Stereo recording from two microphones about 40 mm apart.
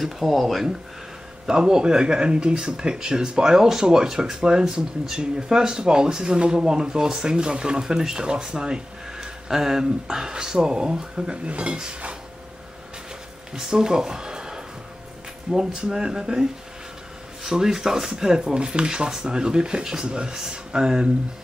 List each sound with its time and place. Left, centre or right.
0.0 s speech: centre
1.5 s speech: centre
13.6 s speech: centre